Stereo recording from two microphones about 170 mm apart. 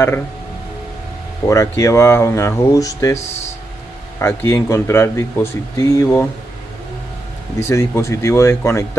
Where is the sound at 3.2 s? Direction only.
40° left (ahead or behind).